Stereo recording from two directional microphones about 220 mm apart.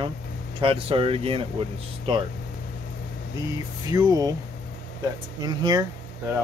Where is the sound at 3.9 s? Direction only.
15° right (ahead or behind).